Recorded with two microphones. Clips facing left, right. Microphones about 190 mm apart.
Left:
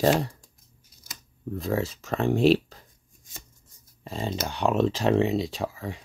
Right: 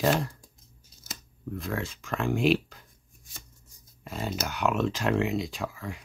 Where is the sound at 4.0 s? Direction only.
30° left (ahead or behind).